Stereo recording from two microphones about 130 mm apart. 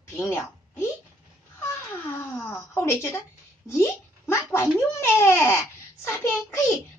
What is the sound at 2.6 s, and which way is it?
A woman's voice, 15° left (ahead or behind).